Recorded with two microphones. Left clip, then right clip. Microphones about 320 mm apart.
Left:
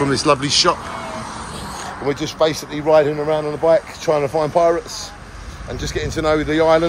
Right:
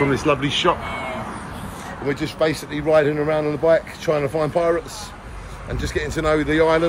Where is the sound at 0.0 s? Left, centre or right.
Centre.